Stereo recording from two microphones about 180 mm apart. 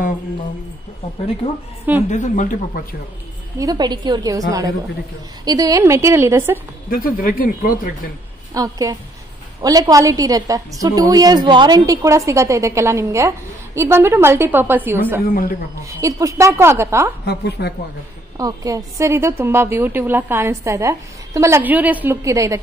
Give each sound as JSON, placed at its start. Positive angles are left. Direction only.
{"t": 2.0, "sound": "speech", "side_deg": 40}
{"t": 3.5, "sound": "a woman's voice", "side_deg": -20}
{"t": 6.9, "sound": "speech", "side_deg": 55}
{"t": 8.5, "sound": "a woman's voice", "side_deg": -20}
{"t": 17.2, "sound": "a woman's voice", "side_deg": 65}
{"t": 18.4, "sound": "a woman's voice", "side_deg": -20}